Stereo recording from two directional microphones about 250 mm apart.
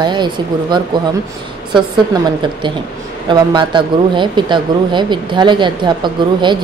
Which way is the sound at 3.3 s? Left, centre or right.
Centre.